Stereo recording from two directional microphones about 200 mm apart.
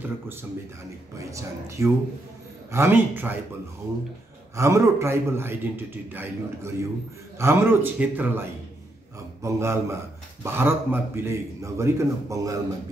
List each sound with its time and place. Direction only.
0.0 s a man's voice: 10° right (ahead or behind)
4.6 s a man's voice: 15° right (ahead or behind)